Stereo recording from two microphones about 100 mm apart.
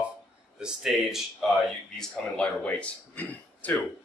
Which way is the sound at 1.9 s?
10° left (ahead or behind).